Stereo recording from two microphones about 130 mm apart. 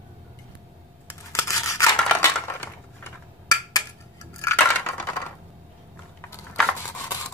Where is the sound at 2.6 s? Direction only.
25° left (ahead or behind).